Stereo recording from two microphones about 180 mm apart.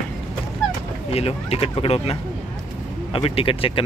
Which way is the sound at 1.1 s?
35° left (ahead or behind).